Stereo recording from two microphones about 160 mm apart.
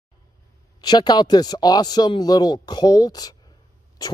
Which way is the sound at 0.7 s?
25° left (ahead or behind).